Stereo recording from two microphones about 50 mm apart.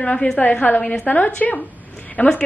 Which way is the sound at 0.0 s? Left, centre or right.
Left.